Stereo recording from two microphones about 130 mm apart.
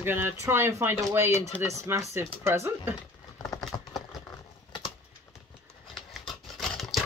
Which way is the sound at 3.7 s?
30° left (ahead or behind).